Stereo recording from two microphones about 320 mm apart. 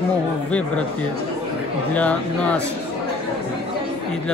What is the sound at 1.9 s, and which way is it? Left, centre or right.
Speech, centre.